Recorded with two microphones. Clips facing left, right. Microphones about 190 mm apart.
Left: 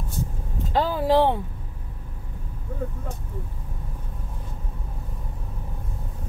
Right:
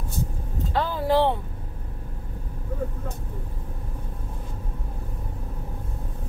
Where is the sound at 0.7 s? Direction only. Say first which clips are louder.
Left 2 dB; 20° left (ahead or behind).